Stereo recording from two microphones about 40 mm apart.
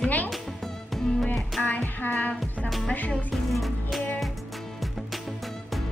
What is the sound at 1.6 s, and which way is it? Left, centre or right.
Music, left.